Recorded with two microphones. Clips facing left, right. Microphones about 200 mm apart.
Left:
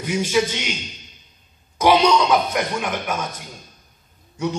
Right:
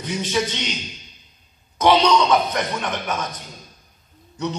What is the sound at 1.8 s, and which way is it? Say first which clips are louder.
A man's voice: even; 10° left (ahead or behind).